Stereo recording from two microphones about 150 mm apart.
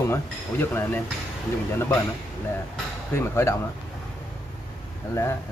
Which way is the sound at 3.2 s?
20° left (ahead or behind).